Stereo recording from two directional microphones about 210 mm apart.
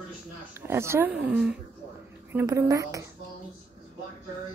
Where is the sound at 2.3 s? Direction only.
15° right (ahead or behind).